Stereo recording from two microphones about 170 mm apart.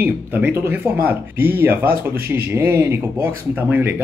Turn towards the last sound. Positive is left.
turn(degrees=-10)  # may be behind; listen again after turning